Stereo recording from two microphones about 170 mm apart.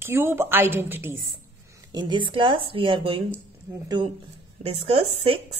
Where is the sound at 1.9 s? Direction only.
25° right (ahead or behind).